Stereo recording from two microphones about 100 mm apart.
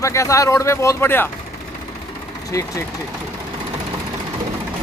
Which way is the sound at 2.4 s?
35° left (ahead or behind).